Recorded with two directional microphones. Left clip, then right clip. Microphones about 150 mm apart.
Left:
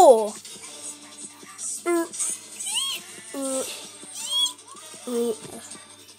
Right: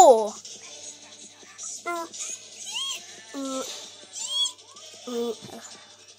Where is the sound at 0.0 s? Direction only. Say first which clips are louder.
Left 1 dB; centre (ahead or behind).